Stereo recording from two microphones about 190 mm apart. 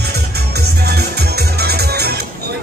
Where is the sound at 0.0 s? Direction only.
60° right (ahead or behind).